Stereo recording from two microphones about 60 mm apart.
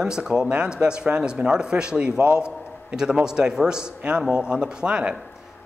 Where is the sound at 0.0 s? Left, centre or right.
Centre.